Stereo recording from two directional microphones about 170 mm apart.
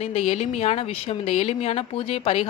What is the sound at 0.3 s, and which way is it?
Speech, 40° left (ahead or behind).